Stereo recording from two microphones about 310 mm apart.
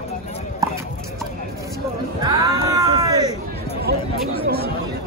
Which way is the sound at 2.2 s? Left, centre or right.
Centre.